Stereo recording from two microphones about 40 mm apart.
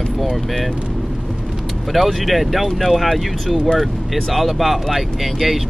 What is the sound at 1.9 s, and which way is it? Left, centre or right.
Speech, centre.